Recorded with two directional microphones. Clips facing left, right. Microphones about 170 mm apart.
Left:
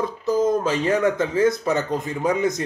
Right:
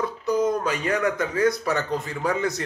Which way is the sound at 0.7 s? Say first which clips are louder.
Left 4 dB; 25° left (ahead or behind).